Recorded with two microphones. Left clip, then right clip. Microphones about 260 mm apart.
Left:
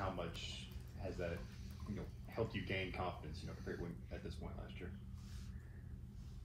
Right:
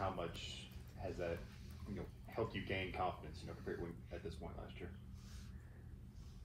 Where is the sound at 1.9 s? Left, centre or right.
Right.